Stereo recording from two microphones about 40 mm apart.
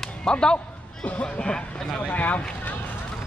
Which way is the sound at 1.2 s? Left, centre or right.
Left.